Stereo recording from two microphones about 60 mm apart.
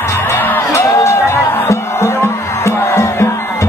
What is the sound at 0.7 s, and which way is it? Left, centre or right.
Music, left.